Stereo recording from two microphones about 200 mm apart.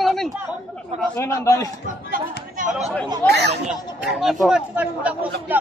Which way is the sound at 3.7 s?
Centre (ahead or behind).